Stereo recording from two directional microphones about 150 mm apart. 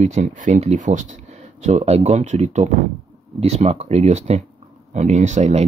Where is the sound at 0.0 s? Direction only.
50° right (ahead or behind).